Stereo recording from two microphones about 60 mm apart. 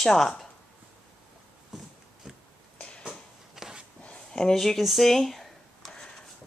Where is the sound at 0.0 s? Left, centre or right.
Centre.